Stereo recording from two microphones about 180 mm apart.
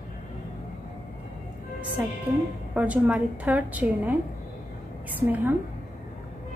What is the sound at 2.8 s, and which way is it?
A woman's voice, 10° right (ahead or behind).